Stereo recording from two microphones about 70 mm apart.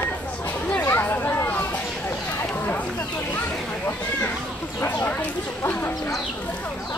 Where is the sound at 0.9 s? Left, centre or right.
Left.